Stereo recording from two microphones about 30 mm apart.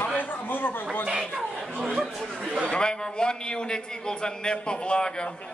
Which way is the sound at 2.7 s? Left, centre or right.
Left.